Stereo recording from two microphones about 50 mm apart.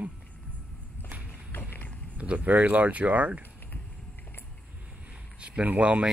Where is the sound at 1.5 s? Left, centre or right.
Left.